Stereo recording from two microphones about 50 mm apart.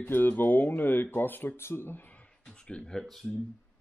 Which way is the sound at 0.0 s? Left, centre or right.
Left.